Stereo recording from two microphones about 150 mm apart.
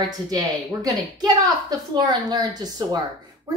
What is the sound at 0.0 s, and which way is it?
A woman's voice, 25° right (ahead or behind).